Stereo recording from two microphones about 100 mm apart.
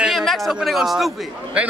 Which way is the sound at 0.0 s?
Centre (ahead or behind).